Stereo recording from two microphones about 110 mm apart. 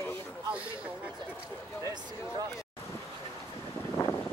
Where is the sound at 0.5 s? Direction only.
10° right (ahead or behind).